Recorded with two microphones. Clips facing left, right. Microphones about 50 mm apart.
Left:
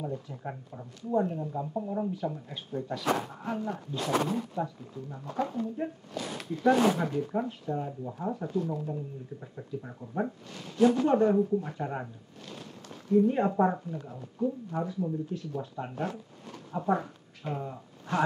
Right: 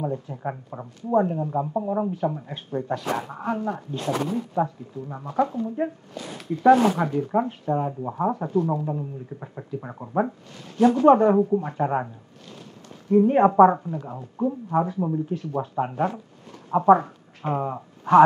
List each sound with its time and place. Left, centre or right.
0.3 s speech: right
0.7 s speech: right
13.1 s speech: right